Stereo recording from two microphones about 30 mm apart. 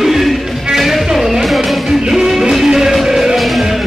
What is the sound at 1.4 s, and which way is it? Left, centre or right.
Music, centre.